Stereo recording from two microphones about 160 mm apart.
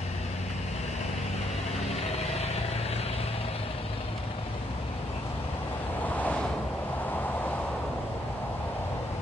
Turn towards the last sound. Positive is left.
turn(degrees=10)  # may be behind; listen again after turning